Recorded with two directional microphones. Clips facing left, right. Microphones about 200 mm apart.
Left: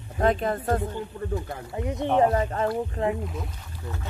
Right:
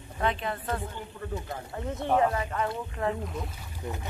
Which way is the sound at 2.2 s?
35° left (ahead or behind).